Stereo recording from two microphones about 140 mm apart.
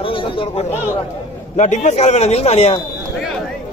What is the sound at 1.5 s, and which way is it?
A man's voice, 60° left (ahead or behind).